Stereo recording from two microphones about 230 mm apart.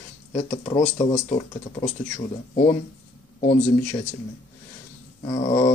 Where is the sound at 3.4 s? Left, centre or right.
Left.